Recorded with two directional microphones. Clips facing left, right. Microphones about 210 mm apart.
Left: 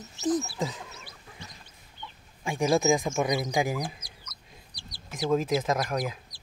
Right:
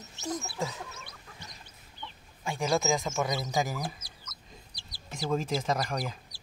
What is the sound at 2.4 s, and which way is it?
Speech, 15° left (ahead or behind).